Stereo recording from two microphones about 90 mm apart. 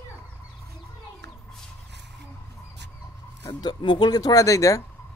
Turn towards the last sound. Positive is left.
turn(degrees=40)  # may be behind; listen again after turning